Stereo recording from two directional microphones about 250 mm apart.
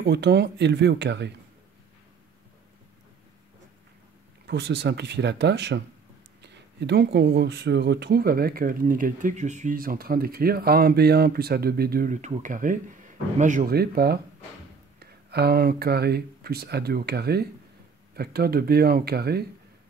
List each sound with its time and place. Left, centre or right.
0.0 s speech: right
4.5 s speech: right